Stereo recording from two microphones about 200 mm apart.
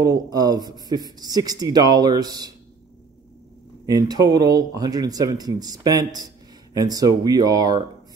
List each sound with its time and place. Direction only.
0.0 s speech: 20° right (ahead or behind)
3.8 s speech: 20° right (ahead or behind)